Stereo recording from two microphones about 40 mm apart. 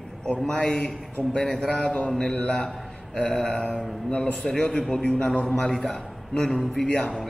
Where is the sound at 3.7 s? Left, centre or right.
Left; by 6.0 s centre.